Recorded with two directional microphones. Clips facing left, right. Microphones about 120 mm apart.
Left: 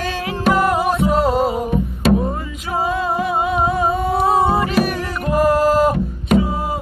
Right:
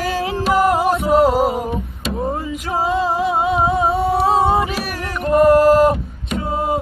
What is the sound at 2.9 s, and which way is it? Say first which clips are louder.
Music: right 3 dB; 25° right (ahead or behind).